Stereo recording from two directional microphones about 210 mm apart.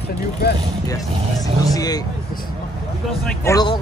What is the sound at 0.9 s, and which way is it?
Speech, 15° left (ahead or behind).